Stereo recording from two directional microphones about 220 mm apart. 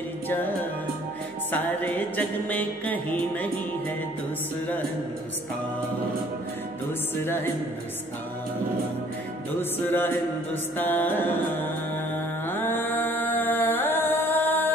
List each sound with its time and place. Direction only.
1.5 s music: 10° left (ahead or behind)
9.6 s music: 10° left (ahead or behind)
12.4 s music: 10° left (ahead or behind)